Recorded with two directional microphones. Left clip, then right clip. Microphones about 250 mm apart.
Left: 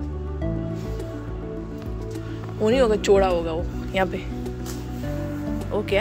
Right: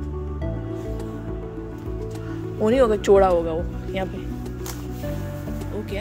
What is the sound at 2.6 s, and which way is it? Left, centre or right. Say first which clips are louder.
Speech: right 1 dB; centre.